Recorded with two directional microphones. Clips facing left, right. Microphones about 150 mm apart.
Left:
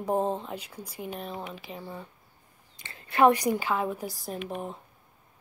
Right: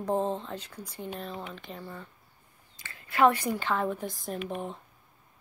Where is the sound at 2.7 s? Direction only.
25° left (ahead or behind); by 4.8 s 5° left (ahead or behind).